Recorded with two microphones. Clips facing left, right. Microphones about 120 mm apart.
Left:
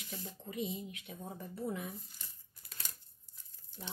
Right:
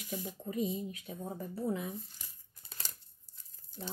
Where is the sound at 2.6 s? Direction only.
25° right (ahead or behind).